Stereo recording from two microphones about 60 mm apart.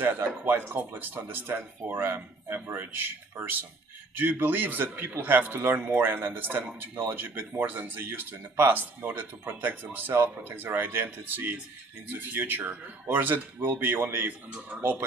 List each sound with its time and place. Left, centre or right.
0.0 s speech: right